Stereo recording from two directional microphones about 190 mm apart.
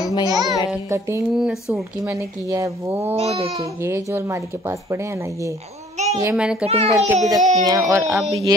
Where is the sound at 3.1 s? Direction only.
30° right (ahead or behind).